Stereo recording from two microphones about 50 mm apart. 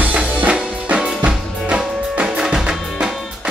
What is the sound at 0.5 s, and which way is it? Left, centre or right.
Music, centre.